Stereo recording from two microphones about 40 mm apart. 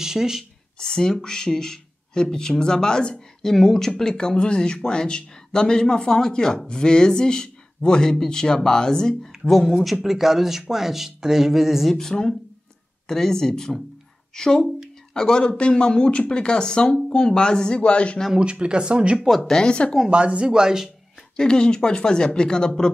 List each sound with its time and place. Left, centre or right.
0.0 s speech: centre
0.7 s speech: centre
3.4 s speech: centre
10.0 s speech: centre
11.9 s speech: centre; by 18.2 s left
18.4 s speech: right
19.4 s speech: left
20.1 s speech: right
21.4 s speech: left